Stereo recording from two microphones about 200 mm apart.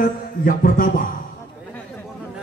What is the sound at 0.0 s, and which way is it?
A man's voice, 45° left (ahead or behind).